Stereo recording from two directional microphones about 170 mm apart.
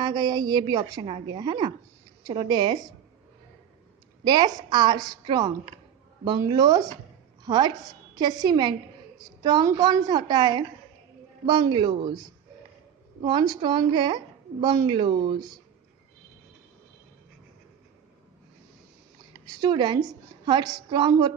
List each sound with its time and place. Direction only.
0.0 s a woman's voice: 25° right (ahead or behind)
4.2 s a woman's voice: 25° right (ahead or behind)
19.4 s a woman's voice: 25° right (ahead or behind)